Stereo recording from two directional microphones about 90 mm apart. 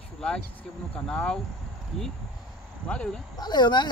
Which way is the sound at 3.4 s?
55° left (ahead or behind).